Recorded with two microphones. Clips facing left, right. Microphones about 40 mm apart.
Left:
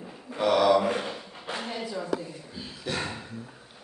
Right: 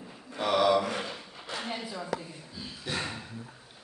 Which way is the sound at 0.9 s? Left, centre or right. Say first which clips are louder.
Left 3 dB; centre.